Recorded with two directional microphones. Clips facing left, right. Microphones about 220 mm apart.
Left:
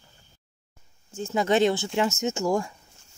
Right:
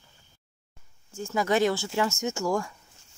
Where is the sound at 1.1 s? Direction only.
20° left (ahead or behind).